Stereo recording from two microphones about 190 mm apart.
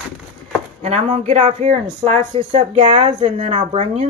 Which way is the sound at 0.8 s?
35° right (ahead or behind).